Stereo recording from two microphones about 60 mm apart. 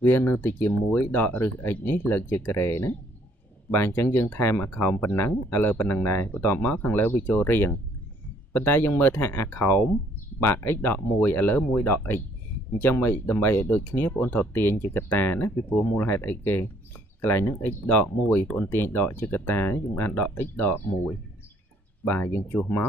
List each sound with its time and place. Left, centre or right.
0.0 s speech: left